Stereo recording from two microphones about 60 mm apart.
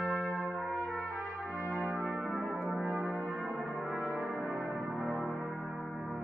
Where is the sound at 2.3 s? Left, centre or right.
Centre.